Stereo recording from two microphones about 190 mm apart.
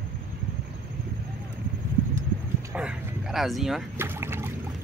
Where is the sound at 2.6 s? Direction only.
10° right (ahead or behind).